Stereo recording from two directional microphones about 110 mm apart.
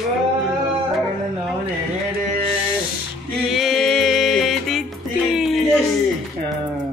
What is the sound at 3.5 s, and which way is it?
Music, centre (ahead or behind).